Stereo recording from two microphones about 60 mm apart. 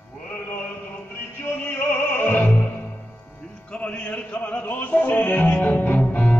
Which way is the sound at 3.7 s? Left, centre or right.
Centre.